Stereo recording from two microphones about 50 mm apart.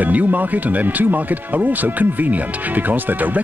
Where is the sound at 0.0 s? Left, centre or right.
Right.